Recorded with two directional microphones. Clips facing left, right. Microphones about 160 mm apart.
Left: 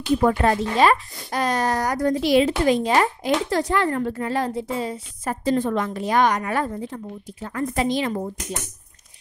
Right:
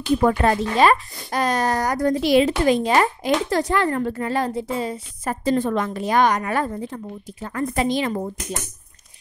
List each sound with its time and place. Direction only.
0.2 s speech: 55° right (ahead or behind)